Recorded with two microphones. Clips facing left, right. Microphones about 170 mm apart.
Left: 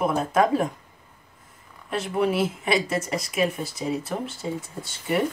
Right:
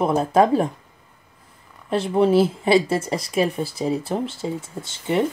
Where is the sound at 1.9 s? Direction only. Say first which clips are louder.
Right 6 dB; 30° right (ahead or behind).